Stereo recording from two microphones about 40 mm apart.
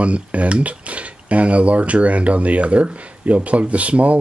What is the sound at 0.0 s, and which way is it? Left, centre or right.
Speech, right.